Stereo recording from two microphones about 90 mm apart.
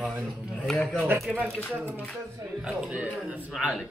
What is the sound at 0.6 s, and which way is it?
Speech, 10° left (ahead or behind).